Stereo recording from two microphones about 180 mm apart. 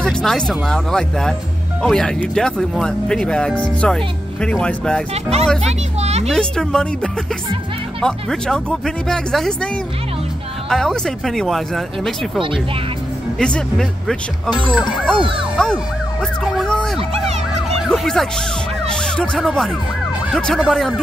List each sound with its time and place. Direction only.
0.0 s speech: centre (ahead or behind)
5.1 s a child's voice: 35° right (ahead or behind)
6.3 s speech: 5° left (ahead or behind)
10.7 s speech: centre (ahead or behind)
13.4 s speech: 5° left (ahead or behind)
15.5 s emergency vehicle: 5° left (ahead or behind)
17.8 s speech: centre (ahead or behind)